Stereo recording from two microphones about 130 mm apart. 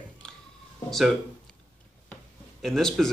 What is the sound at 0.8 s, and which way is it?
Speech, centre (ahead or behind).